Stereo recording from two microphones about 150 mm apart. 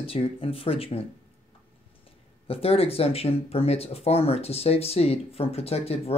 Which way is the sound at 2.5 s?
40° left (ahead or behind).